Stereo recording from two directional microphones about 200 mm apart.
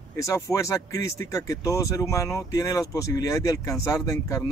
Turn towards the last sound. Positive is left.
turn(degrees=15)  # may be behind; listen again after turning